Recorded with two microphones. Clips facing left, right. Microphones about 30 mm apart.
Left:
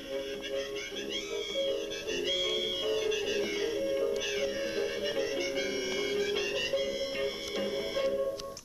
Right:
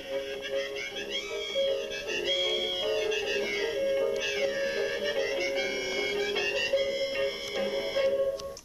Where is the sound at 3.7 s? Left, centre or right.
Centre.